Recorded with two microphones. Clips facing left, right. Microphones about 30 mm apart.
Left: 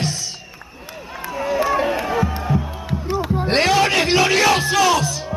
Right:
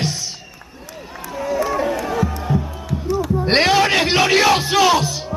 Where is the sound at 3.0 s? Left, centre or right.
Left.